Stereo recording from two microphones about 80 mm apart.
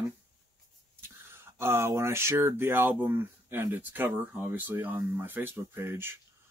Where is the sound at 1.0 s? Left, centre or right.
Right.